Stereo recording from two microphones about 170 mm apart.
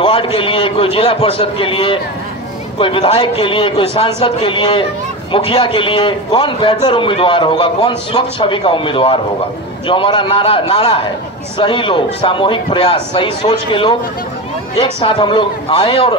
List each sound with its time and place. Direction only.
0.0 s a man's voice: 30° left (ahead or behind)